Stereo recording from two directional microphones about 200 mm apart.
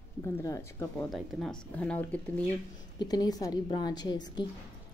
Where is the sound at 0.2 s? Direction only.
15° left (ahead or behind).